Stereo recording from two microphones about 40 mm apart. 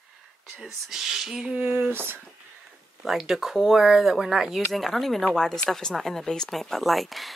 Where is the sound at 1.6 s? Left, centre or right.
Right.